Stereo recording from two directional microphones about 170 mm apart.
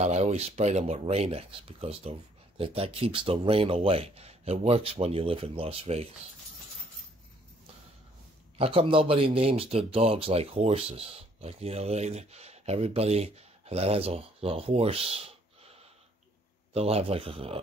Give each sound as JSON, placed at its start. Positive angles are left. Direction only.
{"t": 0.0, "sound": "speech", "side_deg": -40}
{"t": 8.5, "sound": "speech", "side_deg": -35}
{"t": 16.7, "sound": "speech", "side_deg": -35}